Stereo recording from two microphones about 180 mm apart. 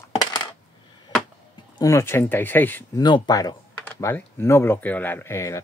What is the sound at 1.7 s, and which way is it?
Speech, 15° left (ahead or behind).